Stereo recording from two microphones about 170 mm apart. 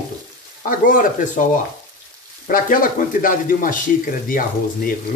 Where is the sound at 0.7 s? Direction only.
55° left (ahead or behind).